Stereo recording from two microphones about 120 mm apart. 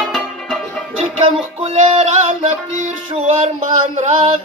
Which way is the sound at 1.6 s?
65° right (ahead or behind).